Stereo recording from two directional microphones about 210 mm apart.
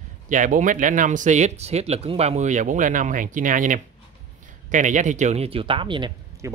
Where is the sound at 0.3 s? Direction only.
40° right (ahead or behind).